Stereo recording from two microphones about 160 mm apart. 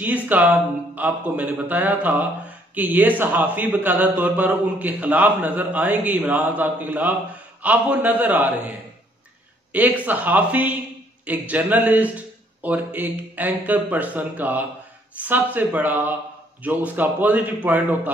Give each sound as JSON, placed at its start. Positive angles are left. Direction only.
{"t": 0.0, "sound": "a man's voice", "side_deg": -10}